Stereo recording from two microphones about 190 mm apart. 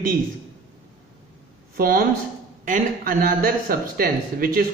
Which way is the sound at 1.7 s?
50° right (ahead or behind).